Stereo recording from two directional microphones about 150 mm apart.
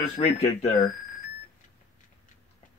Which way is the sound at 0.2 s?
45° left (ahead or behind).